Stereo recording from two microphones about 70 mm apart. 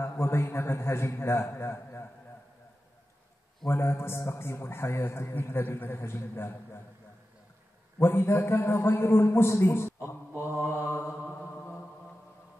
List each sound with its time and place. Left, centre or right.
0.0 s a man's voice: left
3.6 s a man's voice: left
8.0 s a man's voice: left